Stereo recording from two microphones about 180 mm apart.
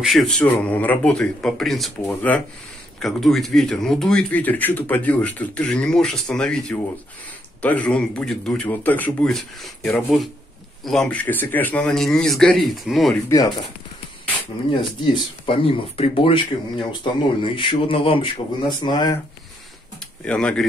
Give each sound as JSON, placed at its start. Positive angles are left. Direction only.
{"t": 0.0, "sound": "speech", "side_deg": 0}
{"t": 13.3, "sound": "speech", "side_deg": 20}
{"t": 15.4, "sound": "speech", "side_deg": 30}
{"t": 20.2, "sound": "speech", "side_deg": 5}